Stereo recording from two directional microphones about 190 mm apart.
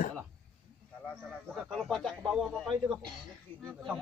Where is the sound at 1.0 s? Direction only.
Centre (ahead or behind).